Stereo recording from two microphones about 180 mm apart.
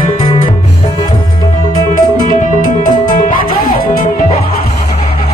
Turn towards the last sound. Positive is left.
turn(degrees=50)  # may be behind; listen again after turning